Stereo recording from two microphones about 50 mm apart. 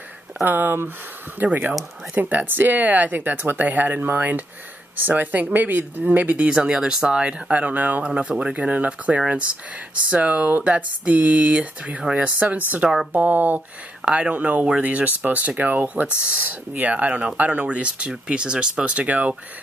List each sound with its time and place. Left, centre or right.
0.5 s speech: right
6.5 s speech: centre; by 8.1 s right
8.1 s speech: right
14.0 s speech: centre
14.3 s speech: right